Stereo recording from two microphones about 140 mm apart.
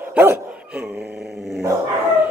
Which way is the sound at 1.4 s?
Centre (ahead or behind).